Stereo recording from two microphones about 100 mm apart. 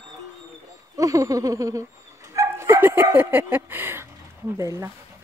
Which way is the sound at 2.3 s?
25° right (ahead or behind).